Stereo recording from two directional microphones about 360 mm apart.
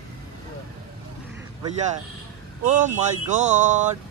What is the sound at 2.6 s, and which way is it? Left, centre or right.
Speech, centre.